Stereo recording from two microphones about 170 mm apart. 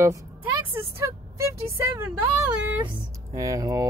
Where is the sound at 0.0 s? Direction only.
15° right (ahead or behind).